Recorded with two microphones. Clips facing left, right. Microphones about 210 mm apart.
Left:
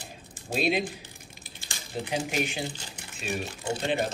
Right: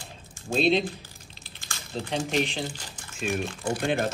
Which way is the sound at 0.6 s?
10° left (ahead or behind).